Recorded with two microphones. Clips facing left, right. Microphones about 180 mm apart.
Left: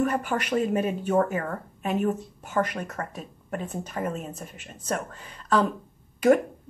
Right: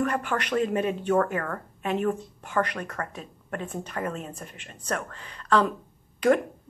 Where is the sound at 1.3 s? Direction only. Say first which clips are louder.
Left 1 dB; 15° left (ahead or behind).